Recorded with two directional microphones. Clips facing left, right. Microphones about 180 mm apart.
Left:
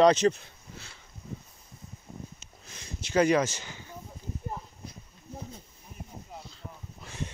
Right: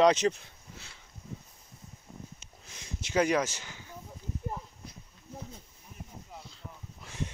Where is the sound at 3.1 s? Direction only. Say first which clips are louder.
Left 3 dB; 10° right (ahead or behind).